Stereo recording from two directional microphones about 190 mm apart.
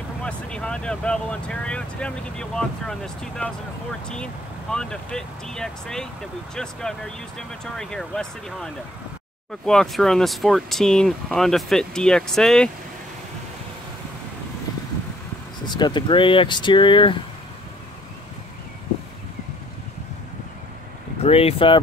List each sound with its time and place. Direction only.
0.2 s speech: 5° left (ahead or behind)
15.6 s speech: 25° left (ahead or behind)
21.2 s speech: 30° left (ahead or behind)